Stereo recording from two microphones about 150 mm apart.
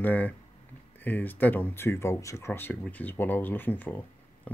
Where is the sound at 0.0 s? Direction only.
10° left (ahead or behind).